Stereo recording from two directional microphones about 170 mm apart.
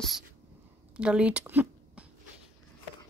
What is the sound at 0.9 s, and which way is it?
Speech, 5° right (ahead or behind).